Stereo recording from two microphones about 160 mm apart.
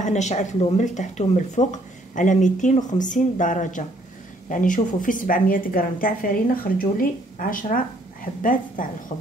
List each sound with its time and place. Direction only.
0.0 s a woman's voice: 45° left (ahead or behind)
9.1 s a woman's voice: 45° left (ahead or behind)